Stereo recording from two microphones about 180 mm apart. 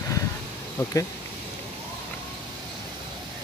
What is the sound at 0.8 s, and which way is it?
Speech, 15° left (ahead or behind).